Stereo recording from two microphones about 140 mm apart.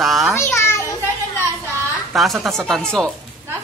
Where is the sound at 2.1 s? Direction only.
Centre (ahead or behind).